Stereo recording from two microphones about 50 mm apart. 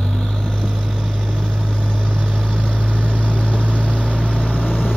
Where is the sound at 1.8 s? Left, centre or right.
Centre.